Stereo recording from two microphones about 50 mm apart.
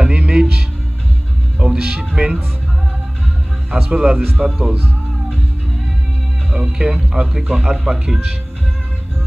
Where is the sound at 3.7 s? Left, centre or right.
Centre.